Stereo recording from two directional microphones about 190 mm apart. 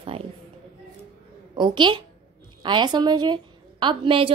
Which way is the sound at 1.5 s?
25° right (ahead or behind).